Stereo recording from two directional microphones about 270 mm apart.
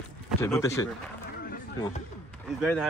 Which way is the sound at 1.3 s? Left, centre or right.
Left.